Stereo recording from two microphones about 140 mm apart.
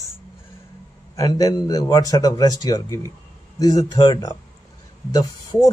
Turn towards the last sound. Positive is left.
turn(degrees=25)  # may be behind; listen again after turning